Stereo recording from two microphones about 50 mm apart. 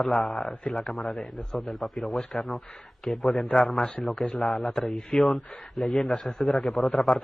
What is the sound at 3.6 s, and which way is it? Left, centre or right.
Speech, centre.